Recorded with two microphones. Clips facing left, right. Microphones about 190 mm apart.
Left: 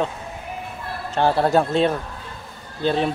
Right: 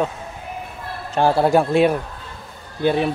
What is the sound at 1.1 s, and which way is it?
A man's voice, 10° right (ahead or behind).